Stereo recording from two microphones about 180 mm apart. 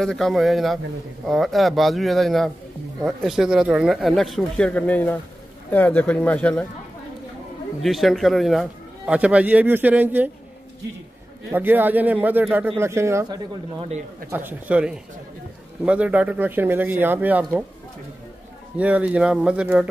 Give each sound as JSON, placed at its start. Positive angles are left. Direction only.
{"t": 0.0, "sound": "speech", "side_deg": 5}
{"t": 7.8, "sound": "speech", "side_deg": 0}
{"t": 11.5, "sound": "speech", "side_deg": -10}
{"t": 13.7, "sound": "speech", "side_deg": -35}
{"t": 14.3, "sound": "speech", "side_deg": -10}
{"t": 18.8, "sound": "speech", "side_deg": -5}